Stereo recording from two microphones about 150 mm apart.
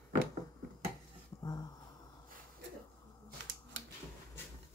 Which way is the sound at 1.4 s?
25° left (ahead or behind).